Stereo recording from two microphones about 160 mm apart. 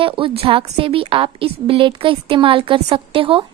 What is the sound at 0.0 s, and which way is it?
A woman's voice, 35° right (ahead or behind).